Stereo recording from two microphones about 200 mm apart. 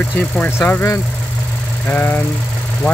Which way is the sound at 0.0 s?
10° left (ahead or behind).